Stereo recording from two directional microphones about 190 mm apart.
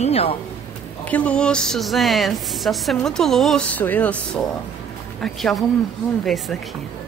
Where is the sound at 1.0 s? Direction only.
5° left (ahead or behind).